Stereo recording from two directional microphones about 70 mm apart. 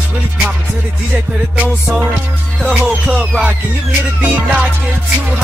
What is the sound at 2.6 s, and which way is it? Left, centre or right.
Music, centre.